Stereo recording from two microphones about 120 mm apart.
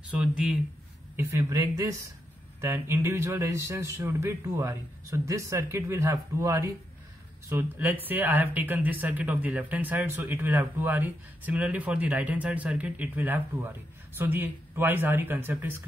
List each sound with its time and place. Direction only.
0.1 s speech: 10° right (ahead or behind)
1.1 s a man's voice: 30° right (ahead or behind)